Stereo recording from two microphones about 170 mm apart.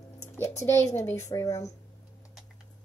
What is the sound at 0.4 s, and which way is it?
Speech, 15° left (ahead or behind).